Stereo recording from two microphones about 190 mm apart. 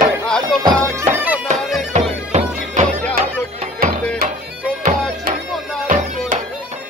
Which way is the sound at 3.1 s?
50° right (ahead or behind).